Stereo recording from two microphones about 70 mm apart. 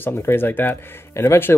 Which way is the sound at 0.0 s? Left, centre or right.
Left.